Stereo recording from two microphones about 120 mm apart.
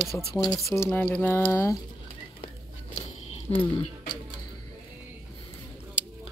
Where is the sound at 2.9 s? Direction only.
55° left (ahead or behind).